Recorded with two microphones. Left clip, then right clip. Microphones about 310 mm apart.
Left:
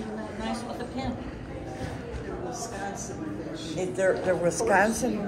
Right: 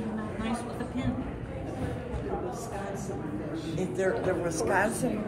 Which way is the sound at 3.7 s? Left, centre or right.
Left.